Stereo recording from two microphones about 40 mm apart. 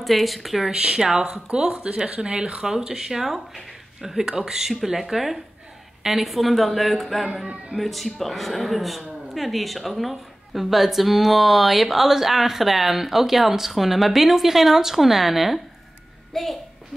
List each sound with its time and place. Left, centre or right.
0.0 s speech: centre
0.7 s a woman's voice: right; by 16.5 s centre